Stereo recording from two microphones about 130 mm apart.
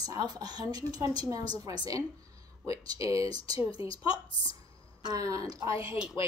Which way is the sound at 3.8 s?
45° left (ahead or behind).